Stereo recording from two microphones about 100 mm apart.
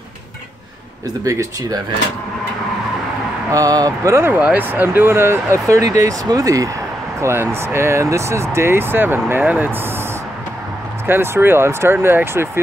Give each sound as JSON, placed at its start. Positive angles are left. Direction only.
{"t": 1.2, "sound": "speech", "side_deg": -30}
{"t": 3.5, "sound": "speech", "side_deg": -35}
{"t": 11.1, "sound": "speech", "side_deg": -20}